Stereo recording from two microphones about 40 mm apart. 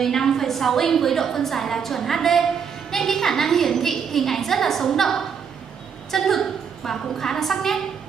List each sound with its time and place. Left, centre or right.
0.0 s a woman's voice: centre